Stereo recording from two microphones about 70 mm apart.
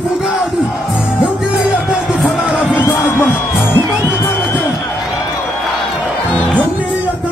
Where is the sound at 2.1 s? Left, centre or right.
Centre.